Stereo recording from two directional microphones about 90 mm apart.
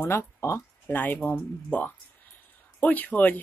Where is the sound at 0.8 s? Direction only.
20° left (ahead or behind).